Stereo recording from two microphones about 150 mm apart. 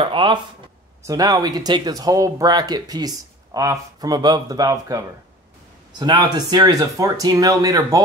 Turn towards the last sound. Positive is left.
turn(degrees=-25)  # may be behind; listen again after turning